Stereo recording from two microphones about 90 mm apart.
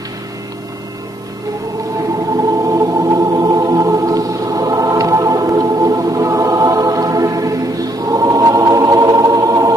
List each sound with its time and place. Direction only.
2.5 s organ: 40° right (ahead or behind)